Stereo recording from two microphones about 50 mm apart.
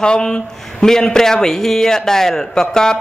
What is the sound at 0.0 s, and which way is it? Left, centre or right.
A man's voice, centre.